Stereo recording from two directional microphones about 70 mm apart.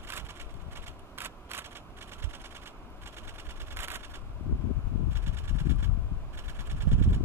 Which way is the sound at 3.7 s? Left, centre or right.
Right.